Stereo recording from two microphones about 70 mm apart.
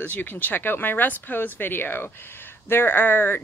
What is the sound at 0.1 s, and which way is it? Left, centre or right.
A woman's voice, left.